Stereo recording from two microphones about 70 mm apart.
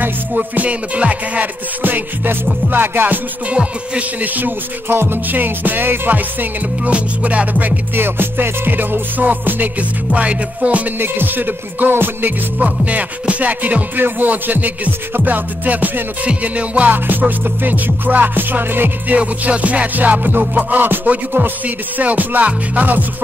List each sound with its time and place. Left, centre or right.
0.0 s music: right